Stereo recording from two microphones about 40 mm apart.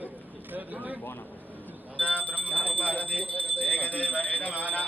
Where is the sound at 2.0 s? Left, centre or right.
Left.